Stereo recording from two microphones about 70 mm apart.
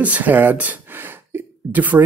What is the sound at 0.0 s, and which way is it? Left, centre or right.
Speech, right.